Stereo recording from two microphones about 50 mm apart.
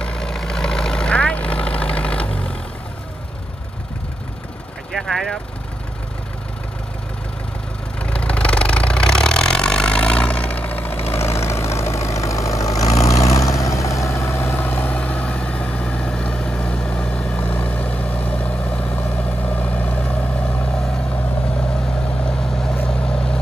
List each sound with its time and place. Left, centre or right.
0.0 s vehicle: centre
4.9 s vehicle: centre
8.0 s vehicle: left
11.1 s vehicle: left
14.6 s vehicle: left
17.4 s vehicle: left
22.2 s vehicle: centre